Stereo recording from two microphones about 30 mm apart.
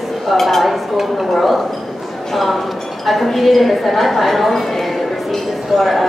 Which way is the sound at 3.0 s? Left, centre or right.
Centre.